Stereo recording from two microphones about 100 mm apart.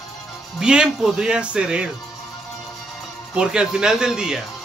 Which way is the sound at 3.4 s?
10° right (ahead or behind).